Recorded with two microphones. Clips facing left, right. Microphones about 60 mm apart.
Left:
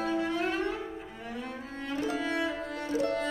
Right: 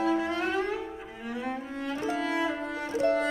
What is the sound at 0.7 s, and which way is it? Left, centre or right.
Cello, centre.